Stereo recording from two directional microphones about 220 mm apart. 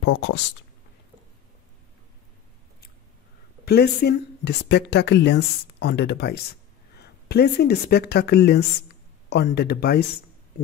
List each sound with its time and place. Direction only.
0.0 s speech: 55° left (ahead or behind)
3.6 s speech: 45° left (ahead or behind)